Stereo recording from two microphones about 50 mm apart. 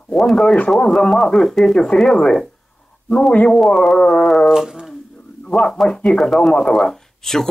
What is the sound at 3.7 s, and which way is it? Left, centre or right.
Speech, centre.